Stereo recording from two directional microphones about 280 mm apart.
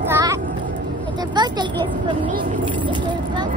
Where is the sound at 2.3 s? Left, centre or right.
Right.